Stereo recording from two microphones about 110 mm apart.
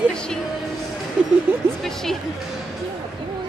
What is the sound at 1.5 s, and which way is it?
Speech, 15° right (ahead or behind).